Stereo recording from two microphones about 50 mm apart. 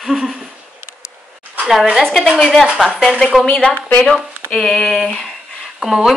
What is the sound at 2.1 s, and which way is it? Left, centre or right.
Speech, centre.